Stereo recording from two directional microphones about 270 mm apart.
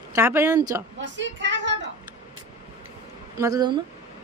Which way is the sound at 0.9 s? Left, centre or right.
Right.